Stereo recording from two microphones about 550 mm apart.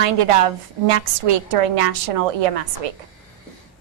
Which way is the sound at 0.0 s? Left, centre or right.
Right.